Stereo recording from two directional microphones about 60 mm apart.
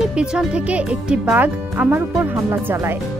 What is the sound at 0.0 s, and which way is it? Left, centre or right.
Speech, centre.